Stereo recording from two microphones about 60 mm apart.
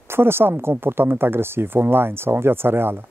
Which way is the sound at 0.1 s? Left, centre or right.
Right.